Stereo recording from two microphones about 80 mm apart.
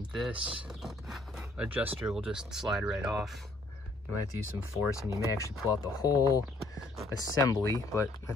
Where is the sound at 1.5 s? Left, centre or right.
Centre.